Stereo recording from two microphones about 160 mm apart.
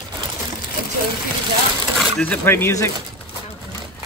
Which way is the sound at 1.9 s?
5° left (ahead or behind).